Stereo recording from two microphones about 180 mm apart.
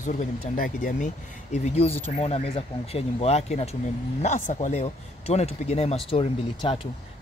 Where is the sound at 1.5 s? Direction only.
35° left (ahead or behind).